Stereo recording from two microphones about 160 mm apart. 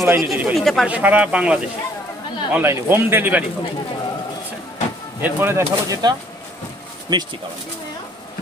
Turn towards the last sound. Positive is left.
turn(degrees=-25)  # may be behind; listen again after turning